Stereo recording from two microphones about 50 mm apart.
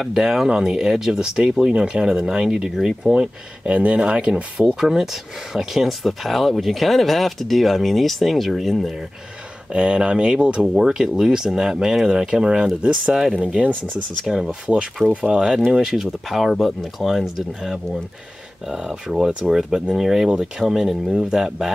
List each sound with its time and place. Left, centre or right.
0.0 s speech: centre
4.7 s speech: centre
9.7 s speech: right
10.6 s speech: centre
14.2 s speech: centre